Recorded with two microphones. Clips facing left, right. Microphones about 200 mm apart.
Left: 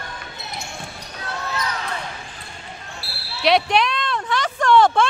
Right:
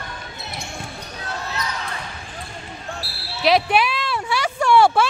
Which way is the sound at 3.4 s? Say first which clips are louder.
Even; 5° right (ahead or behind).